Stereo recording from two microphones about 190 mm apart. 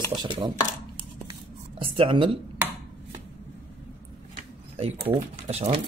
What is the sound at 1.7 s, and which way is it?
Speech, 30° right (ahead or behind).